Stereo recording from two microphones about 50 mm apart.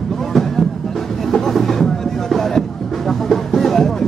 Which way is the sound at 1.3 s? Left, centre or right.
Centre.